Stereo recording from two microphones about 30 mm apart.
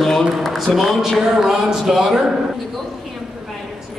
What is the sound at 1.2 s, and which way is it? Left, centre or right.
Speech, centre.